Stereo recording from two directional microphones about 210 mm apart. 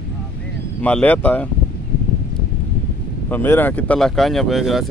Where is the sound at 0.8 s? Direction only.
5° left (ahead or behind).